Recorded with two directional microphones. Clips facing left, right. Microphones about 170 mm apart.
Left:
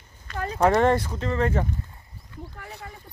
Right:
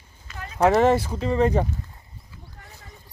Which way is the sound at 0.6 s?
5° right (ahead or behind).